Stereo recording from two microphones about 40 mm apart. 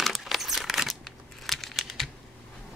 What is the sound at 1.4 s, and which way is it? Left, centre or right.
Crumpling, centre.